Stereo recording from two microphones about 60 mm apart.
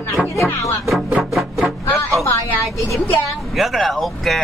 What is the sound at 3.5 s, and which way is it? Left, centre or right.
Speech, centre.